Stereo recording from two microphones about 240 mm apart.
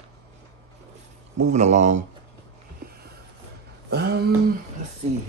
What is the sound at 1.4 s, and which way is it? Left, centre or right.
Speech, right.